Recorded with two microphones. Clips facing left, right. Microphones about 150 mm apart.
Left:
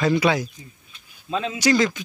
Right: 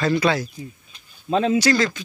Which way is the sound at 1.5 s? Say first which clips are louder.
Right 1 dB; 15° left (ahead or behind).